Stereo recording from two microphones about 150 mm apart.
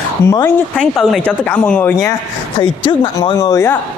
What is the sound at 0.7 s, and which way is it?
Speech, 5° left (ahead or behind).